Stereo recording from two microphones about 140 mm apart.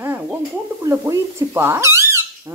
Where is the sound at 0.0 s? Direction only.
15° right (ahead or behind).